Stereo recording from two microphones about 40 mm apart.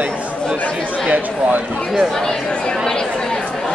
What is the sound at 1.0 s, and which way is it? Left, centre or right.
Speech, right.